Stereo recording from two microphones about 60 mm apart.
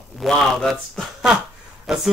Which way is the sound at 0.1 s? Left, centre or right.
Centre.